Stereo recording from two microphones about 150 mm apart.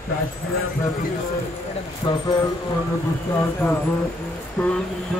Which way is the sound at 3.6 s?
15° left (ahead or behind).